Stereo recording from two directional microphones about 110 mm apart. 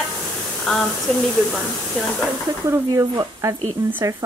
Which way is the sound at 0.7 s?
Centre (ahead or behind).